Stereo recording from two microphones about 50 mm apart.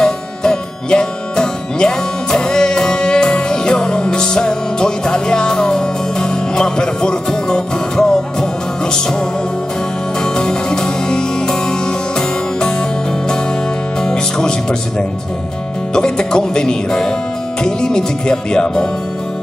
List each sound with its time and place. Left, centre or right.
0.0 s music: centre
10.2 s music: centre
14.0 s music: centre
15.9 s speech: centre